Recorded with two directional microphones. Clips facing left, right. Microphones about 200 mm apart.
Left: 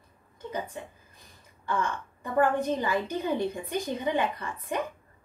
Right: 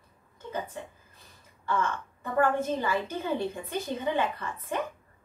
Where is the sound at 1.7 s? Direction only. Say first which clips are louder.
Right 1 dB; 15° left (ahead or behind).